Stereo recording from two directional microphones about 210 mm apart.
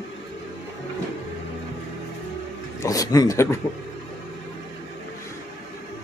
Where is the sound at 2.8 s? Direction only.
15° left (ahead or behind).